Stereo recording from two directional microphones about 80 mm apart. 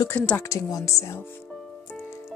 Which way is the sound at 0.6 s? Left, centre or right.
Left.